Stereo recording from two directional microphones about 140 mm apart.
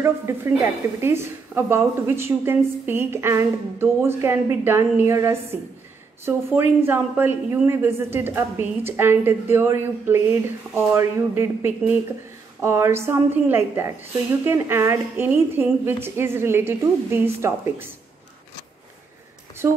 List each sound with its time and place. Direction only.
0.0 s a woman's voice: 15° right (ahead or behind)